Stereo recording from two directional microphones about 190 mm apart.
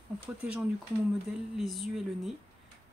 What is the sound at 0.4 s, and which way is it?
Speech, 5° right (ahead or behind).